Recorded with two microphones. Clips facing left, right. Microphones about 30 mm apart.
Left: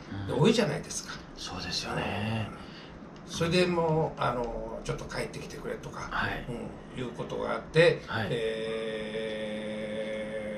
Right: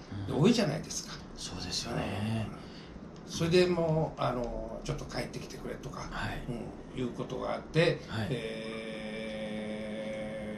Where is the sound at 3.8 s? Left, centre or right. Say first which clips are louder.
Left 3 dB; left.